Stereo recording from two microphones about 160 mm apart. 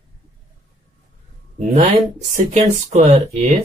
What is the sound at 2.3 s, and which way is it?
Speech, 60° right (ahead or behind).